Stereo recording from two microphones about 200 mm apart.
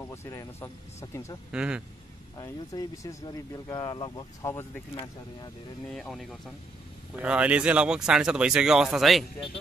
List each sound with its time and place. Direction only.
0.1 s speech: 15° left (ahead or behind)
1.5 s speech: 5° right (ahead or behind)
2.3 s speech: 15° left (ahead or behind)
5.9 s speech: centre (ahead or behind)